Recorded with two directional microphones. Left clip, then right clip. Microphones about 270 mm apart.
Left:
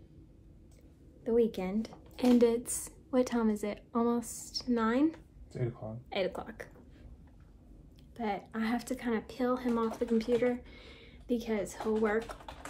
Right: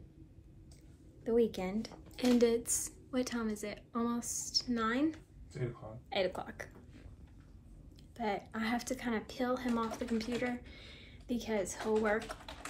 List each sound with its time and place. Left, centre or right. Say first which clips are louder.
1.2 s speech: left 2 dB; centre
6.0 s speech: even; centre
8.2 s speech: left 1 dB; centre